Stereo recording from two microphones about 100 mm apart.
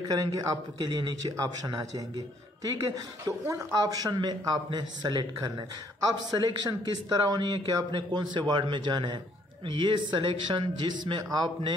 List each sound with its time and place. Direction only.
0.0 s a man's voice: 35° right (ahead or behind)